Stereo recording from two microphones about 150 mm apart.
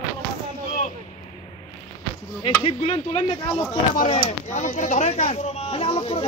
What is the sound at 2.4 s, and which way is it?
Speech, 35° left (ahead or behind).